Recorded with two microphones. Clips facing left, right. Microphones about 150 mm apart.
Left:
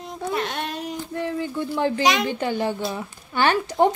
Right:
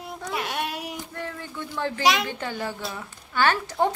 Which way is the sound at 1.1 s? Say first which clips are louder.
Left 9 dB; 20° left (ahead or behind).